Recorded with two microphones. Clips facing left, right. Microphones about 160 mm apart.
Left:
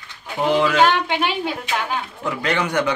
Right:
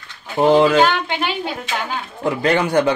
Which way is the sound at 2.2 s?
30° right (ahead or behind).